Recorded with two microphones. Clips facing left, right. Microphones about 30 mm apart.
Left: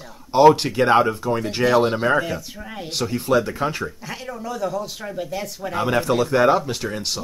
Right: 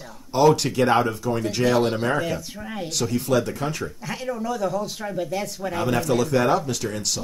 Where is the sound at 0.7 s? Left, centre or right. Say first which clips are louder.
Left 3 dB; centre.